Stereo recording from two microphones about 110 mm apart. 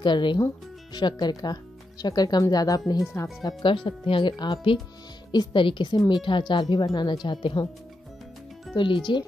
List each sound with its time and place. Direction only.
0.0 s a woman's voice: 45° left (ahead or behind)
3.6 s a woman's voice: 50° left (ahead or behind)
8.7 s a woman's voice: 50° left (ahead or behind)